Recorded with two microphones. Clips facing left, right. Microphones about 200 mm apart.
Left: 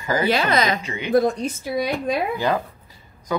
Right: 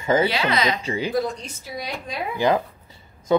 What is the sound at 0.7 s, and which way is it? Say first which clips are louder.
Speech: right 1 dB; 30° right (ahead or behind).